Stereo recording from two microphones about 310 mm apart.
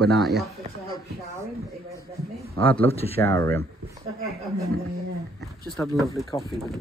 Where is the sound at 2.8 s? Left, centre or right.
Centre.